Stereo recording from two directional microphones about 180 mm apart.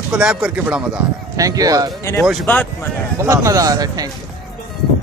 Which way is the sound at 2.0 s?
15° left (ahead or behind).